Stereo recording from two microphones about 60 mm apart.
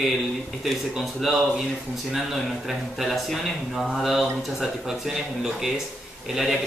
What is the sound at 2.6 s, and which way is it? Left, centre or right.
Speech, centre.